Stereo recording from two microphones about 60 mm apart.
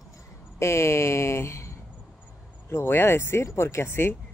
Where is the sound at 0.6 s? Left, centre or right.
Left.